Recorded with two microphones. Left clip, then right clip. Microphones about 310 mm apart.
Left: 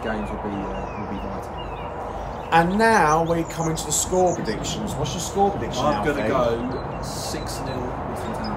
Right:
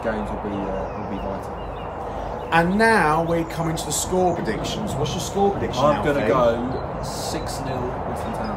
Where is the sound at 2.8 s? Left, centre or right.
Centre.